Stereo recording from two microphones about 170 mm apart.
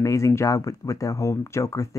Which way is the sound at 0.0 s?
20° left (ahead or behind).